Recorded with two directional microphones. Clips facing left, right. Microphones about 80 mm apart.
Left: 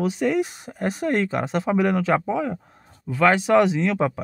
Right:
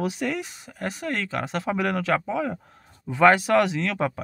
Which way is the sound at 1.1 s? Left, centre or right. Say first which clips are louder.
Left 5 dB; centre.